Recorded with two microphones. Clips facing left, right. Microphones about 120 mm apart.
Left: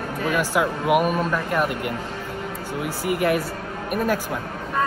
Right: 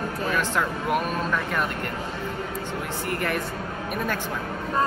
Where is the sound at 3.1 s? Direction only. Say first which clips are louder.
Left 7 dB; 5° left (ahead or behind).